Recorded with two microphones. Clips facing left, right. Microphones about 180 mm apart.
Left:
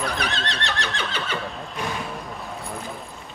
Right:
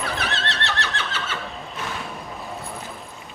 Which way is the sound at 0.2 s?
15° left (ahead or behind).